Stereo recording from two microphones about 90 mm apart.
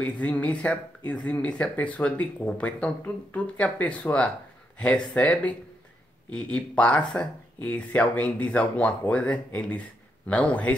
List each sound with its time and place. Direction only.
0.0 s speech: 15° left (ahead or behind)